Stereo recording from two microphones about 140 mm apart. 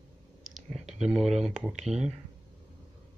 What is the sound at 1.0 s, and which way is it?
Speech, 5° right (ahead or behind).